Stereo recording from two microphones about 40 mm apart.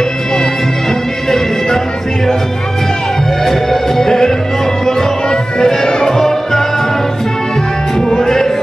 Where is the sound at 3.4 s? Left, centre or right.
Centre.